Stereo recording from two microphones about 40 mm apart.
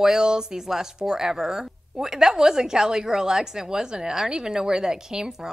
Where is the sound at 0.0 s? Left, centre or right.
Centre.